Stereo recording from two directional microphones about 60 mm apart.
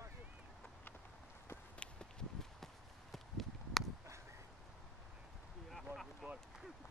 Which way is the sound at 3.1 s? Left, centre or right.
Centre.